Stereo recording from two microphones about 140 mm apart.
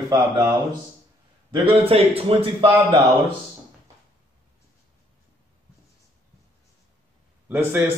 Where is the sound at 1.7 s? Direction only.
45° right (ahead or behind).